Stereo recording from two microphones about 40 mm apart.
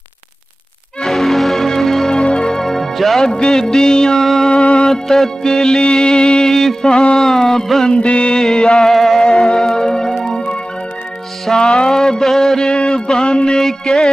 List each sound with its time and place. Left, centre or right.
1.0 s music: centre
2.1 s music: centre
4.5 s music: left
9.2 s music: left
10.2 s organ: left
11.5 s a sound: centre
13.2 s music: left